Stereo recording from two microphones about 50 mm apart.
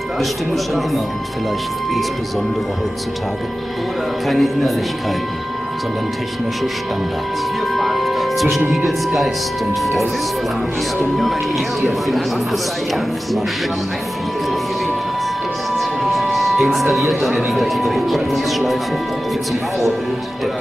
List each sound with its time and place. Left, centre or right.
0.2 s speech: centre
4.3 s speech: centre
7.7 s speech: centre
11.1 s speech: centre
15.8 s siren: centre
16.9 s speech: centre